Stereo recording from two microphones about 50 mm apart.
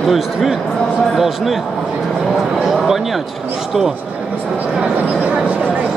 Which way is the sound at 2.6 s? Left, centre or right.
Centre.